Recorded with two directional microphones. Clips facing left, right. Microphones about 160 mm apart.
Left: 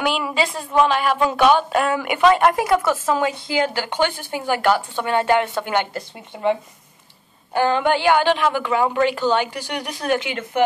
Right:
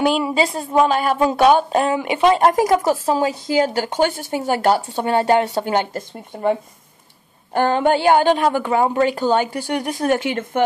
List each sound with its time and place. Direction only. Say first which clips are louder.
0.0 s speech: right 4 dB; 35° right (ahead or behind)
7.5 s a woman's voice: right 2 dB; 45° right (ahead or behind)